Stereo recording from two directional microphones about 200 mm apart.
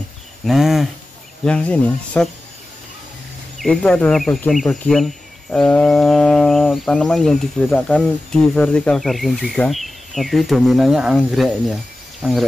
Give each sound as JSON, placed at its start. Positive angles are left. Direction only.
{"t": 0.5, "sound": "speech", "side_deg": 0}
{"t": 3.5, "sound": "speech", "side_deg": 0}